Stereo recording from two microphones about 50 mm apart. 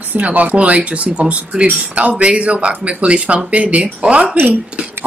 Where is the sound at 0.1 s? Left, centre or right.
Right.